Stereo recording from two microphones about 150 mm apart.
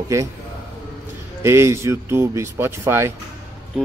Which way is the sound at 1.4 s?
20° right (ahead or behind).